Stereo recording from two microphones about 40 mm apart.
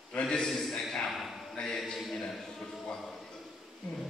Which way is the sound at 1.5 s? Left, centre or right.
Centre.